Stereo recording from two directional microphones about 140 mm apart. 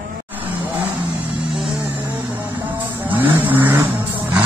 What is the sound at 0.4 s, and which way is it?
Vehicle, 10° right (ahead or behind).